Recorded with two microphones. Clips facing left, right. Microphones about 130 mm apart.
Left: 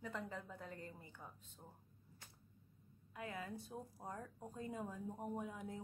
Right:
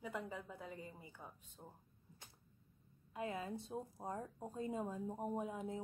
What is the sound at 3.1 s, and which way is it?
A woman's voice, 25° right (ahead or behind).